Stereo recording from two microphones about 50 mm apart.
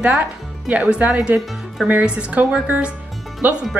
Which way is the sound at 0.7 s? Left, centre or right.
Right.